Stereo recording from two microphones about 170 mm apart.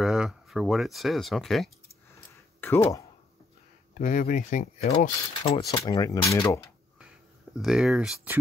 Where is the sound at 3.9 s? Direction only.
50° left (ahead or behind).